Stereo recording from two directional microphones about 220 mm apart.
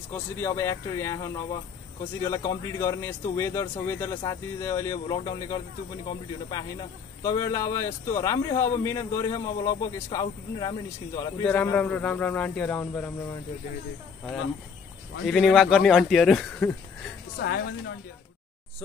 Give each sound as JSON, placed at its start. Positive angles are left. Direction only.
{"t": 0.1, "sound": "a man's voice", "side_deg": 10}
{"t": 15.2, "sound": "speech", "side_deg": 0}
{"t": 17.4, "sound": "a woman's voice", "side_deg": 55}